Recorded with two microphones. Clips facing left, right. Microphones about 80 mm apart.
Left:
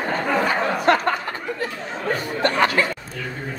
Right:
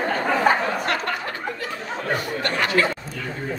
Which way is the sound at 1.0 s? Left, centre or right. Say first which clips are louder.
Left 3 dB; left.